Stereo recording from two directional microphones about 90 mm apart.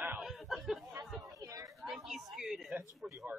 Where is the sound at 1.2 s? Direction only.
40° right (ahead or behind).